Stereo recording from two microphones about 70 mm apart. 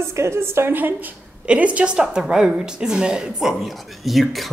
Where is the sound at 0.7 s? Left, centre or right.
Right.